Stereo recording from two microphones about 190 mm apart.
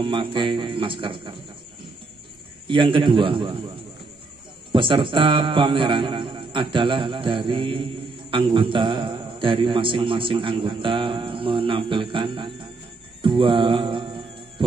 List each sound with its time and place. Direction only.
0.0 s a man's voice: 25° right (ahead or behind)
2.7 s a man's voice: 25° right (ahead or behind)
4.7 s a man's voice: 25° right (ahead or behind)
13.2 s music: 25° right (ahead or behind)